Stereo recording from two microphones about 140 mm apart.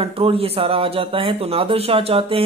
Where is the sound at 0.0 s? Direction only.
45° right (ahead or behind).